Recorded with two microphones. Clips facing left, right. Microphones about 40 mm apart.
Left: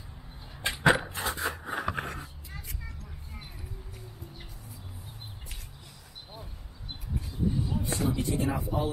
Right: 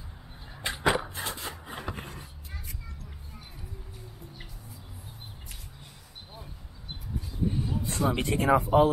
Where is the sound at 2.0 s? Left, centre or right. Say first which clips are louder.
Left 6 dB; left.